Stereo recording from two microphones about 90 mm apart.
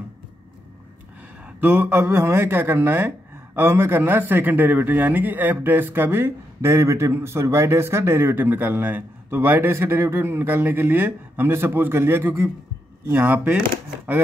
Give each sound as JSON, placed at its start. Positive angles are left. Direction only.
{"t": 1.4, "sound": "a man's voice", "side_deg": -20}